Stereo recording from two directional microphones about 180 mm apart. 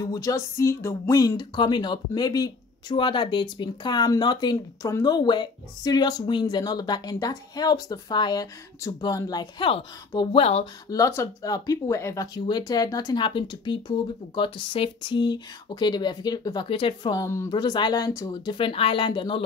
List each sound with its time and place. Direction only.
0.0 s speech: 20° left (ahead or behind)
10.9 s speech: 15° left (ahead or behind)